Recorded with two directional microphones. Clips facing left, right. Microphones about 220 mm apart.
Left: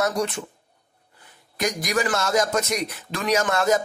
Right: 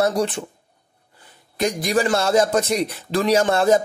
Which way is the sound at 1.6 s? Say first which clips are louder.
Right 4 dB; 30° right (ahead or behind).